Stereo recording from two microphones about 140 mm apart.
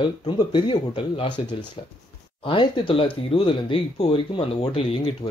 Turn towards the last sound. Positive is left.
turn(degrees=40)  # may be behind; listen again after turning